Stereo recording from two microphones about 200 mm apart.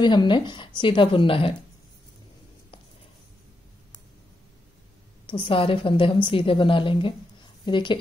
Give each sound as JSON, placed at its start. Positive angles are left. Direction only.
{"t": 0.0, "sound": "a woman's voice", "side_deg": 20}
{"t": 5.2, "sound": "a woman's voice", "side_deg": 25}